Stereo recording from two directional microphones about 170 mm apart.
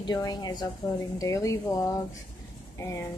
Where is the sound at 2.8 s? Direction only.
15° left (ahead or behind).